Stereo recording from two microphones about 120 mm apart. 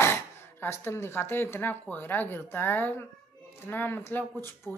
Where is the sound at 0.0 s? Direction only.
20° left (ahead or behind).